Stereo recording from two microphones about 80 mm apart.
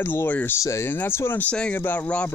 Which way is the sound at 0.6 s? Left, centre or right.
Left.